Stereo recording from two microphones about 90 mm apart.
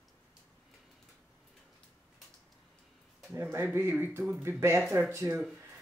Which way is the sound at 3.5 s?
25° right (ahead or behind).